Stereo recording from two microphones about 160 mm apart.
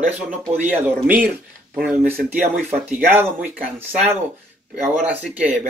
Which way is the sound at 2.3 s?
55° right (ahead or behind).